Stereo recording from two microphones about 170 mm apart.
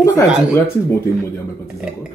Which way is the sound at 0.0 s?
15° left (ahead or behind).